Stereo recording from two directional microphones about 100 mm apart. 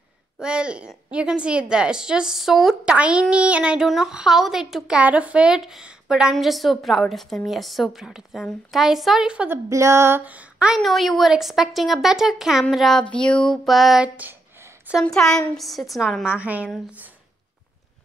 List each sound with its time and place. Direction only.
0.4 s a woman's voice: 10° right (ahead or behind)
9.5 s a woman's voice: 30° right (ahead or behind)
10.7 s a woman's voice: centre (ahead or behind)
13.0 s a woman's voice: 10° left (ahead or behind)
14.0 s a woman's voice: 15° right (ahead or behind)
15.0 s a woman's voice: 5° left (ahead or behind)
16.3 s a woman's voice: 15° right (ahead or behind)